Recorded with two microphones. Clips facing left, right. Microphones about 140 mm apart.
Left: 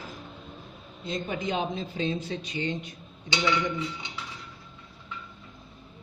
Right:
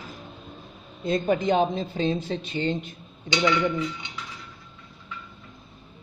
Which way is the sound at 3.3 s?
25° left (ahead or behind).